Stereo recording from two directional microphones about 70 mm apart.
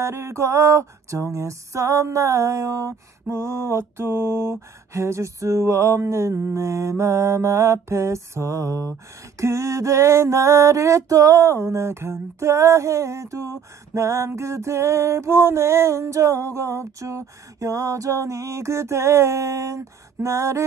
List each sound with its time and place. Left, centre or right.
0.0 s music: right